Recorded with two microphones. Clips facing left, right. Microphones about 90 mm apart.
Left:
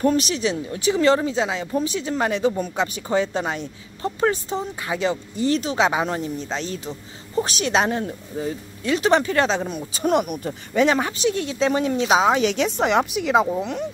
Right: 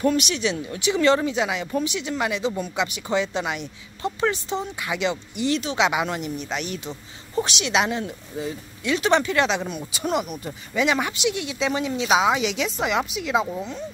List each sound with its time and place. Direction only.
0.0 s speech: 35° left (ahead or behind)
9.9 s speech: 45° left (ahead or behind)